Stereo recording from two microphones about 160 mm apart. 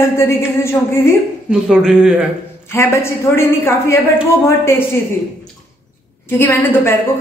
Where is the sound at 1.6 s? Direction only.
5° right (ahead or behind).